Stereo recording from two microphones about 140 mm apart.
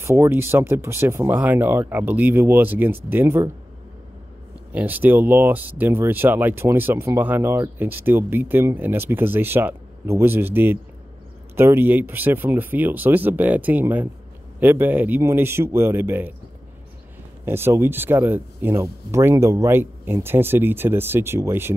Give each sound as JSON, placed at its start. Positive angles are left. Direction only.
{"t": 0.0, "sound": "speech", "side_deg": -20}
{"t": 4.7, "sound": "speech", "side_deg": -10}
{"t": 17.5, "sound": "speech", "side_deg": -15}